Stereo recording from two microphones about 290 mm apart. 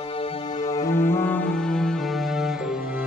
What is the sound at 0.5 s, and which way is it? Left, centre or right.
Music, left.